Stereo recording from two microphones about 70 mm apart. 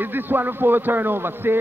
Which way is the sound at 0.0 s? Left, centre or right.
Right.